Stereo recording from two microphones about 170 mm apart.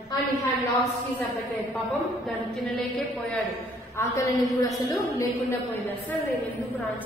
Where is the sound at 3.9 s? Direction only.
20° left (ahead or behind).